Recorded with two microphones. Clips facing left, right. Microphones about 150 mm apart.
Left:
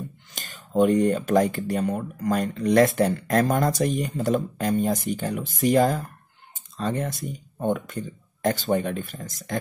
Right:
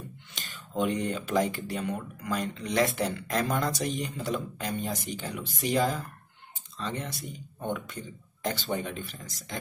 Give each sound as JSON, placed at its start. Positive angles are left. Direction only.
{"t": 0.3, "sound": "speech", "side_deg": 45}